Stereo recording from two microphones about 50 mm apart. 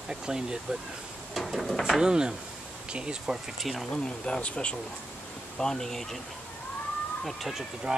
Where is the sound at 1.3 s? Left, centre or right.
Centre.